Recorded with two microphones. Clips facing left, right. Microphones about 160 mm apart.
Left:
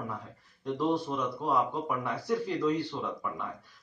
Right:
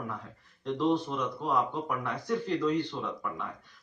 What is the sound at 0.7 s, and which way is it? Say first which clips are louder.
Speech: right 1 dB; 10° left (ahead or behind).